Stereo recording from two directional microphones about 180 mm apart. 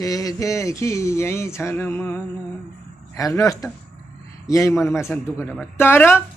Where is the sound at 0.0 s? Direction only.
20° left (ahead or behind).